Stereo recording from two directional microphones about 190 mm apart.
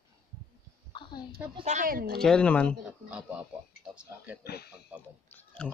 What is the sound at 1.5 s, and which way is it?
Speech, 40° right (ahead or behind).